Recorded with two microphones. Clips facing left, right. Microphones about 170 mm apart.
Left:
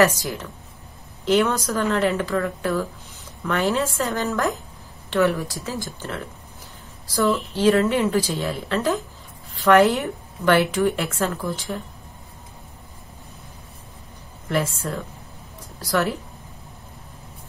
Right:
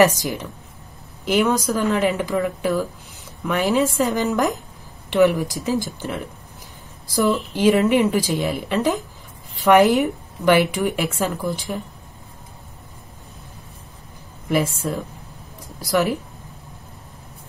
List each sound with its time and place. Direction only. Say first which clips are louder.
0.0 s a woman's voice: right 2 dB; 15° right (ahead or behind)
7.5 s a woman's voice: right 3 dB; 15° right (ahead or behind)
14.5 s a woman's voice: right 3 dB; 10° right (ahead or behind)